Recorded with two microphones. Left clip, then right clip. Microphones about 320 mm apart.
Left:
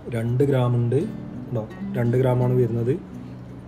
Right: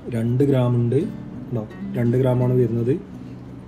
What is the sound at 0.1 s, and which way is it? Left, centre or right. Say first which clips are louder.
Speech: right 2 dB; centre.